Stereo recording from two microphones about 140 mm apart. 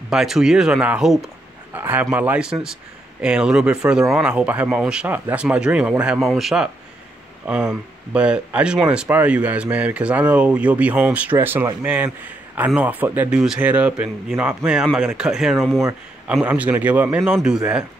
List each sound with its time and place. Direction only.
0.1 s speech: 5° right (ahead or behind)